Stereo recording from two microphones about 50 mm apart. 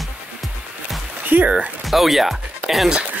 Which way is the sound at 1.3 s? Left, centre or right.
Right.